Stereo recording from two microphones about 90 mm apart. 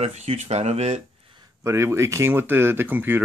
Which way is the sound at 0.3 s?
90° right.